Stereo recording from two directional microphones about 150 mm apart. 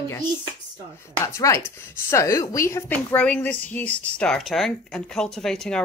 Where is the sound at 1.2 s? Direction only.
20° left (ahead or behind).